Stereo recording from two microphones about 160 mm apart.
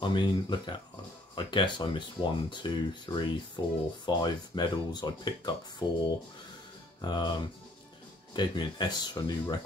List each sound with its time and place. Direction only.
0.0 s speech: 30° left (ahead or behind)
7.0 s speech: 25° left (ahead or behind)